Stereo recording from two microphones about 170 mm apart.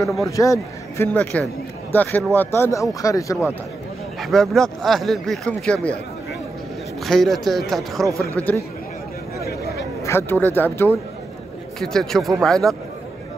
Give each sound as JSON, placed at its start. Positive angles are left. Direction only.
{"t": 0.2, "sound": "a man's voice", "side_deg": 20}
{"t": 4.2, "sound": "speech", "side_deg": 0}
{"t": 7.1, "sound": "speech", "side_deg": 0}
{"t": 8.1, "sound": "speech", "side_deg": -15}
{"t": 10.0, "sound": "a man's voice", "side_deg": 15}